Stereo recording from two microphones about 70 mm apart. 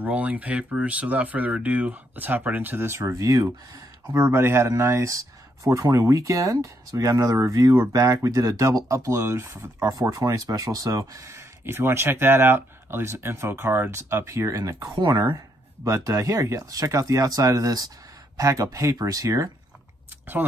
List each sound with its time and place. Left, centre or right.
0.0 s speech: centre
3.0 s speech: right
9.8 s speech: right